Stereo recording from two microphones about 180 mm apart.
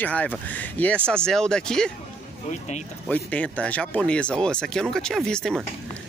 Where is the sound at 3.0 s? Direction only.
5° left (ahead or behind).